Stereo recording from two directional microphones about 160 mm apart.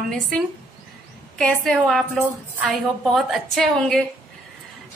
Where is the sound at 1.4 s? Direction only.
5° left (ahead or behind).